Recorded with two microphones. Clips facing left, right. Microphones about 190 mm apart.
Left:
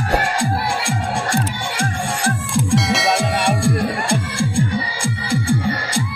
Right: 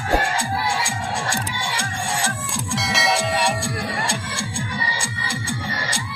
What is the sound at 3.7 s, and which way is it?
Music, 55° left (ahead or behind).